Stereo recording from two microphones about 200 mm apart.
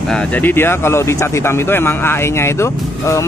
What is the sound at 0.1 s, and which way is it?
Speech, 5° left (ahead or behind).